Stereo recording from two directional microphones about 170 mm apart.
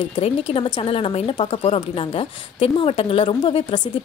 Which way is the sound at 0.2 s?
35° left (ahead or behind).